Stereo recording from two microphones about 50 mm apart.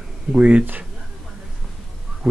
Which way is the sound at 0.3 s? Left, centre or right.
Right.